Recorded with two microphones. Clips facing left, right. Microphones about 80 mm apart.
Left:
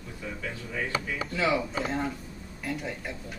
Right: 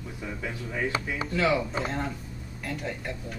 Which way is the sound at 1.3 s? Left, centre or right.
Centre.